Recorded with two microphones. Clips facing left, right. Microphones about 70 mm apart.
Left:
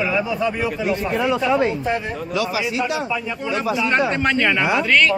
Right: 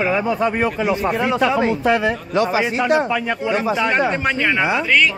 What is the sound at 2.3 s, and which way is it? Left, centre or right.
Speech, right.